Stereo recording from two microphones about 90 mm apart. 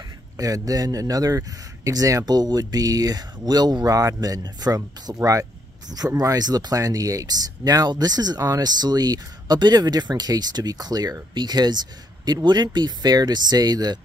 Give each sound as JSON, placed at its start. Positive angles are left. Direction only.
{"t": 0.4, "sound": "speech", "side_deg": -40}